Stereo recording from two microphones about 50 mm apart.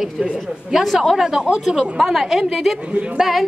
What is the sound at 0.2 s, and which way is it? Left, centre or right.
A woman's voice, centre.